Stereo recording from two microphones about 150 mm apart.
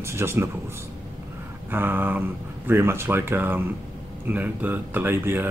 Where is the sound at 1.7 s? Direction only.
10° right (ahead or behind).